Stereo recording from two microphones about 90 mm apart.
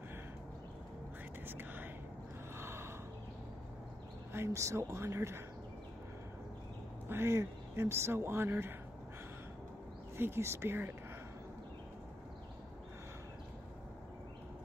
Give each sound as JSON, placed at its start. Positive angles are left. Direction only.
{"t": 1.4, "sound": "whispering", "side_deg": -25}
{"t": 2.5, "sound": "a sound", "side_deg": -30}
{"t": 4.3, "sound": "speech", "side_deg": -30}
{"t": 7.1, "sound": "speech", "side_deg": -30}
{"t": 10.1, "sound": "speech", "side_deg": -25}